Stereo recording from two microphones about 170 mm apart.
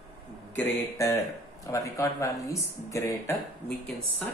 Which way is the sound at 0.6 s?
20° left (ahead or behind).